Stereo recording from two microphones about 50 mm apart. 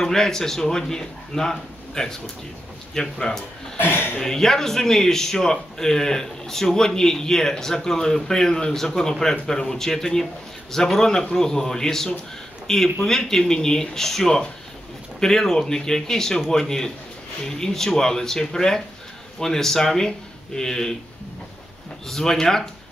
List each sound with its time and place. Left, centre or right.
0.0 s a man's voice: centre
3.7 s a sound: left
4.2 s a man's voice: centre
22.0 s a man's voice: centre